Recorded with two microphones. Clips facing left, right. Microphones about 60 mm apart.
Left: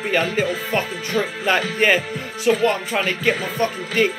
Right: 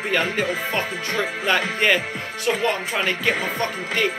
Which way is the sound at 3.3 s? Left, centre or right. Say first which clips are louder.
Left 2 dB; right.